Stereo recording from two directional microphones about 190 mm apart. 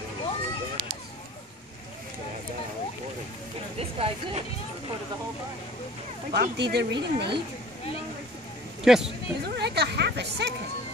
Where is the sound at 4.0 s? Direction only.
30° right (ahead or behind).